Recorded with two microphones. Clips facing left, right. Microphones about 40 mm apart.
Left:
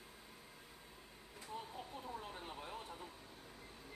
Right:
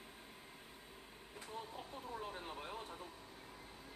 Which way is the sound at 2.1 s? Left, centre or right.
Centre.